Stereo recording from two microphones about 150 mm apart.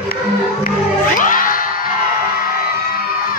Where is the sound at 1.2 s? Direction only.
65° left (ahead or behind).